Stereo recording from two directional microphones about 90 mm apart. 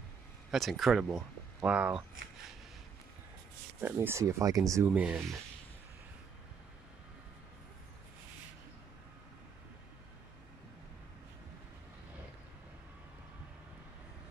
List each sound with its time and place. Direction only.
0.5 s speech: centre (ahead or behind)
1.6 s speech: 15° right (ahead or behind)
3.8 s speech: 20° right (ahead or behind)
4.2 s speech: 35° right (ahead or behind)
4.8 s speech: 15° right (ahead or behind)